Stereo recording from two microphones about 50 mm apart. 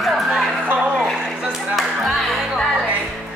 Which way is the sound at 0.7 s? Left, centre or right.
Right.